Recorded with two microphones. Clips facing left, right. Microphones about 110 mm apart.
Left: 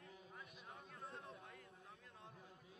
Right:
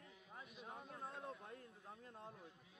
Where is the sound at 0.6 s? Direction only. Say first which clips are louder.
Right 6 dB; 30° right (ahead or behind).